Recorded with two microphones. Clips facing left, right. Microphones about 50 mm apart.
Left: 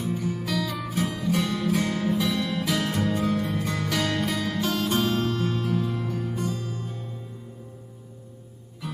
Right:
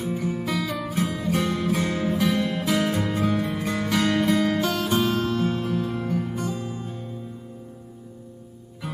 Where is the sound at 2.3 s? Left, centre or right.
Right.